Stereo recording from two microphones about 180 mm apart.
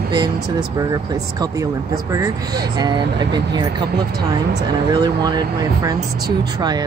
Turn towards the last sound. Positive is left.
turn(degrees=-20)  # may be behind; listen again after turning